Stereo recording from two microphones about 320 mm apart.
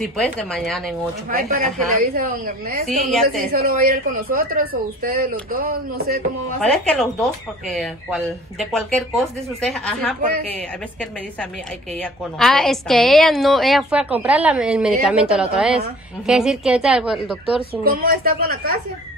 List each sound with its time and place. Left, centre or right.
0.0 s speech: centre
1.6 s speech: right
6.6 s speech: centre
18.0 s speech: right